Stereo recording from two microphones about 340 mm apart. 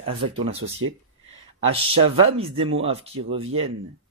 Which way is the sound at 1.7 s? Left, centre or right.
Centre.